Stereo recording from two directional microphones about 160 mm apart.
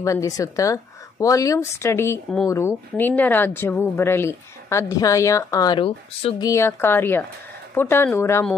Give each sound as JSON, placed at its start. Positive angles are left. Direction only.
{"t": 0.0, "sound": "speech", "side_deg": 20}
{"t": 6.4, "sound": "speech", "side_deg": 15}